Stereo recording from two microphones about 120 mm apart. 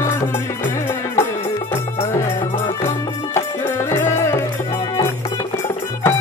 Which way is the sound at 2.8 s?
20° left (ahead or behind).